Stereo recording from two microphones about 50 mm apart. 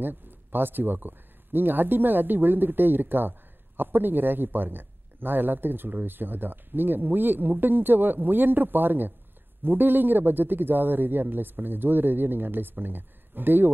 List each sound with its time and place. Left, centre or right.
0.0 s speech: right